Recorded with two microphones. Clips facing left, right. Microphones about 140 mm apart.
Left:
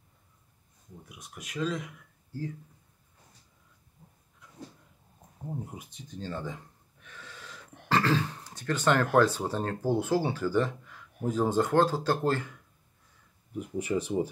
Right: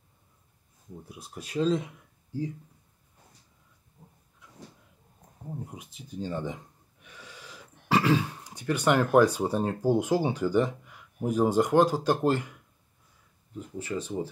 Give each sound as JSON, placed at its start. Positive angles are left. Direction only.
{"t": 1.0, "sound": "speech", "side_deg": -35}
{"t": 5.5, "sound": "gasp", "side_deg": 5}
{"t": 7.9, "sound": "burping", "side_deg": -10}
{"t": 9.1, "sound": "speech", "side_deg": -15}
{"t": 13.6, "sound": "speech", "side_deg": 15}